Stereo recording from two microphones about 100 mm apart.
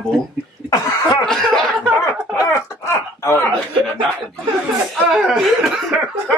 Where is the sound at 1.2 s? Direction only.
5° left (ahead or behind).